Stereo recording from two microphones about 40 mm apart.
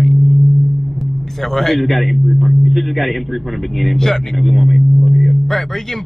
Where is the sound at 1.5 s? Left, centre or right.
Centre.